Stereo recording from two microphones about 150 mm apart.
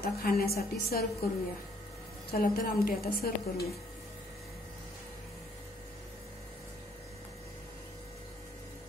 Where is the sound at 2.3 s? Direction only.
85° left.